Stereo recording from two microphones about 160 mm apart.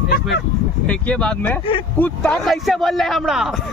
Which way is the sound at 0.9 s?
10° left (ahead or behind).